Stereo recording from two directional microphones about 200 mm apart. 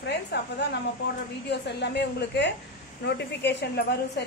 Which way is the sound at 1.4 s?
55° left (ahead or behind).